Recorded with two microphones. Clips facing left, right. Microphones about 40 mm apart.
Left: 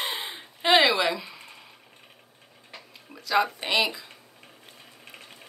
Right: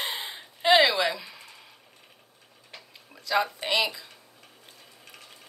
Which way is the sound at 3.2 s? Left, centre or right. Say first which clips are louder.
Left 2 dB; left.